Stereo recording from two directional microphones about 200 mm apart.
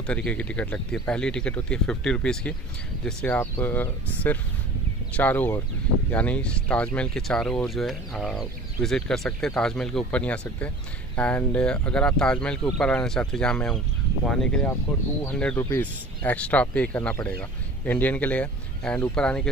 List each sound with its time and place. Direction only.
0.0 s speech: 5° left (ahead or behind)